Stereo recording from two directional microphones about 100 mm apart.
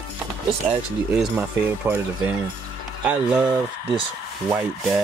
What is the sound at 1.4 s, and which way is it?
Speech, 15° right (ahead or behind).